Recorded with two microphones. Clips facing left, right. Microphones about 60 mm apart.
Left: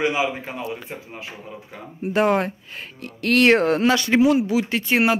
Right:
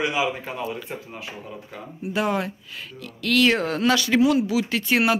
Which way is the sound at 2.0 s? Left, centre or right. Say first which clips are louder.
Left 5 dB; left.